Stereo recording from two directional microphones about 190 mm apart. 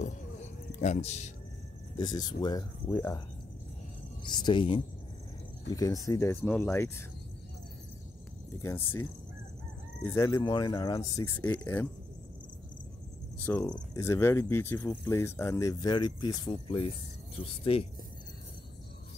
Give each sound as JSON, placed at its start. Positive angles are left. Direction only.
{"t": 0.0, "sound": "a sound", "side_deg": 40}
{"t": 2.0, "sound": "speech", "side_deg": 20}
{"t": 4.2, "sound": "speech", "side_deg": 25}
{"t": 8.6, "sound": "speech", "side_deg": 10}
{"t": 10.0, "sound": "speech", "side_deg": 15}
{"t": 13.7, "sound": "speech", "side_deg": 15}